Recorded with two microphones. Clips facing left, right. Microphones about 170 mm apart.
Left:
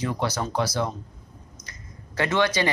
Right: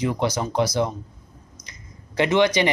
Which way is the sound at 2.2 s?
15° right (ahead or behind).